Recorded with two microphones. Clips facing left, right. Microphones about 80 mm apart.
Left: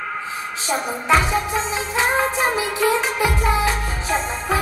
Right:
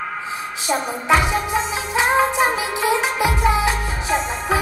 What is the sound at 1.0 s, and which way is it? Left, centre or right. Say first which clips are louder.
Music: even; right.